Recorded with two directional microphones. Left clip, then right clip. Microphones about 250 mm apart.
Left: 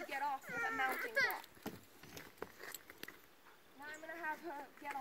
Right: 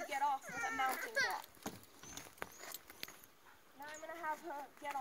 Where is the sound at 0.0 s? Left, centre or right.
Right.